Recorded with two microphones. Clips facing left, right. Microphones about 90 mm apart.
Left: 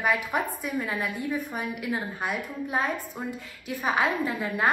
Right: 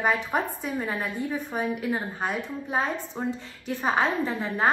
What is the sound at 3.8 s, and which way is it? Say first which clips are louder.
Speech: right 1 dB; 30° right (ahead or behind).